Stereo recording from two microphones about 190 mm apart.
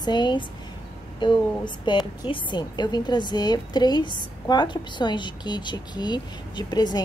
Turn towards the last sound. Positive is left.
turn(degrees=20)  # may be behind; listen again after turning